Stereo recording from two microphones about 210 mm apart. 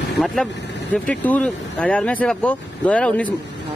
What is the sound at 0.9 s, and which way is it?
Speech, 5° left (ahead or behind).